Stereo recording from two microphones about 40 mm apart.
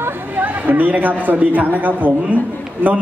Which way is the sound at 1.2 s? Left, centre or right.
Right.